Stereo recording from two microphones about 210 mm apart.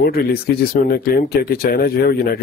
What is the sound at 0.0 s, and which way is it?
Speech, 45° left (ahead or behind).